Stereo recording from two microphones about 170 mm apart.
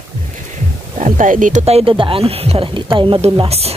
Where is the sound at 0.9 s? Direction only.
50° right (ahead or behind).